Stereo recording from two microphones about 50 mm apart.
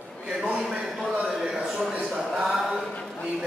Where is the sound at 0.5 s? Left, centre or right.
Centre.